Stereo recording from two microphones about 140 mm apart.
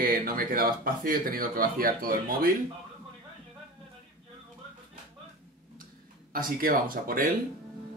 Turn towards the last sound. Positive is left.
turn(degrees=-90)